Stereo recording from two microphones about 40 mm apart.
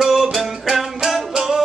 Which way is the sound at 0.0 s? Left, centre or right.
Centre.